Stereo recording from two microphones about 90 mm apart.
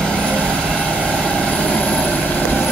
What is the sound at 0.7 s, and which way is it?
Vehicle, 10° left (ahead or behind).